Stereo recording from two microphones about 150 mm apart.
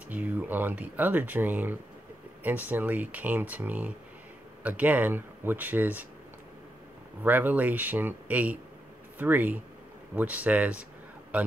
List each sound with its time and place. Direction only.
0.1 s speech: 10° right (ahead or behind)
7.2 s speech: 10° right (ahead or behind)